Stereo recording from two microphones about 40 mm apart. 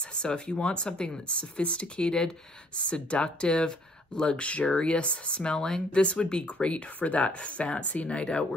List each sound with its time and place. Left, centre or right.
0.0 s speech: left
2.7 s speech: left